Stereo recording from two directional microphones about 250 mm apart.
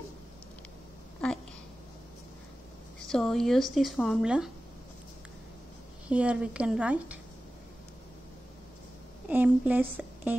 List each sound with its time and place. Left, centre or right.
3.1 s a woman's voice: centre
6.0 s a woman's voice: centre
9.3 s a woman's voice: centre